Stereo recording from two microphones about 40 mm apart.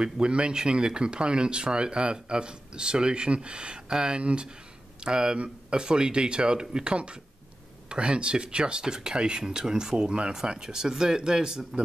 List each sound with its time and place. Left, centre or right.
0.0 s speech: right